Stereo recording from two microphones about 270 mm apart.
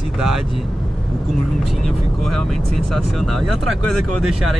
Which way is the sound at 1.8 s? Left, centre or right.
Right.